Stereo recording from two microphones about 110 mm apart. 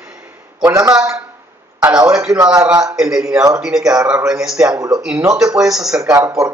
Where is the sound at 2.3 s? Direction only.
30° right (ahead or behind).